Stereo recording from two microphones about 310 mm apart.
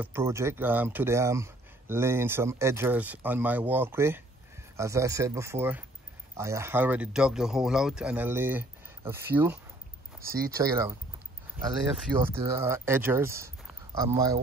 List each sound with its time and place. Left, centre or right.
0.0 s speech: centre
10.3 s speech: right
10.6 s speech: centre
12.3 s speech: centre